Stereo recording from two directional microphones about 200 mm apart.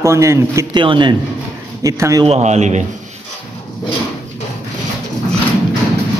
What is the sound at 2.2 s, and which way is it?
Speech, 35° right (ahead or behind).